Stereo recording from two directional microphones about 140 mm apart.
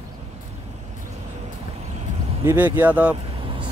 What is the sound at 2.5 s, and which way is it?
Speech, 15° right (ahead or behind).